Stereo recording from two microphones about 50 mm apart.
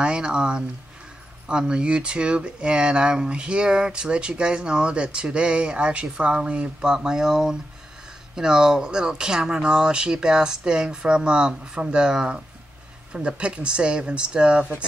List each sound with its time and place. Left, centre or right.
0.0 s speech: centre